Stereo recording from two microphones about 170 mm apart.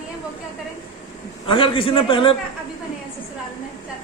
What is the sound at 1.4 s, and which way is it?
Speech, 30° left (ahead or behind).